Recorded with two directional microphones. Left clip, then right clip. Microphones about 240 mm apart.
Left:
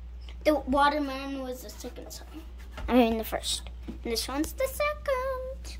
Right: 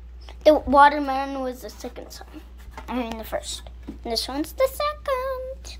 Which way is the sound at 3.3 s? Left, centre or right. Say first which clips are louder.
Right 2 dB; centre.